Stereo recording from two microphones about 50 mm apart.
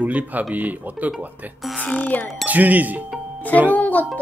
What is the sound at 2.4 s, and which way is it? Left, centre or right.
Speech, right.